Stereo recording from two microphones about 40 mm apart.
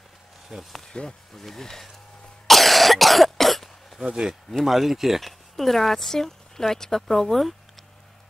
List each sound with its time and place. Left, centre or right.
0.5 s speech: centre
1.0 s speech: centre
2.4 s cough: centre
4.0 s speech: centre
4.6 s speech: centre
5.2 s a woman's voice: centre